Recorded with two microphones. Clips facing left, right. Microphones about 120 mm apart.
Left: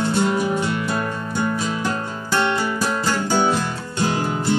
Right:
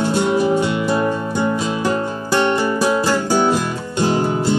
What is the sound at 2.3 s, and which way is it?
Music, 10° right (ahead or behind).